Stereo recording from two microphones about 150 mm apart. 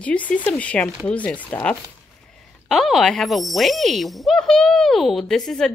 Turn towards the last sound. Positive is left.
turn(degrees=5)  # may be behind; listen again after turning